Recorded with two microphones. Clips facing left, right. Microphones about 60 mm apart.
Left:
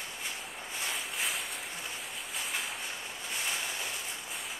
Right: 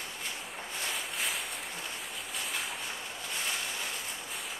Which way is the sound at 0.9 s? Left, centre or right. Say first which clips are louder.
Even; centre.